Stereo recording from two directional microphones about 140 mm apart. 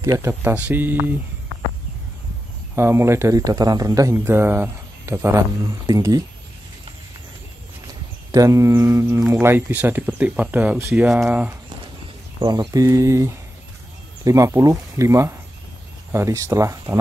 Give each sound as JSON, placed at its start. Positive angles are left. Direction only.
{"t": 0.2, "sound": "speech", "side_deg": -15}
{"t": 2.7, "sound": "a man's voice", "side_deg": -20}
{"t": 7.8, "sound": "a sound", "side_deg": -25}
{"t": 9.3, "sound": "speech", "side_deg": -15}
{"t": 12.4, "sound": "a man's voice", "side_deg": -30}